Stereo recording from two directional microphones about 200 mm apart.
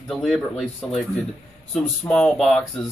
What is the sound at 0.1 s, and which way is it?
Speech, centre (ahead or behind).